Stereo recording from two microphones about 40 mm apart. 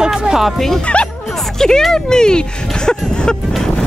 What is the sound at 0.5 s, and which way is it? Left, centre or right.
Speech, centre.